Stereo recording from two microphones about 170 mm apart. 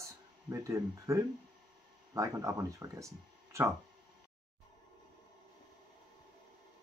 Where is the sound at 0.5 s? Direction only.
15° right (ahead or behind).